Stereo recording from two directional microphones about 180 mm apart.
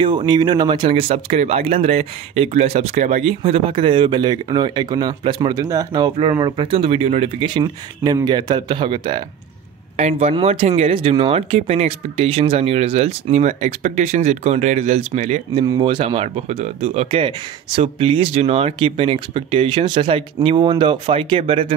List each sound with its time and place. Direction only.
0.0 s speech: 25° right (ahead or behind)
9.9 s speech: 40° right (ahead or behind)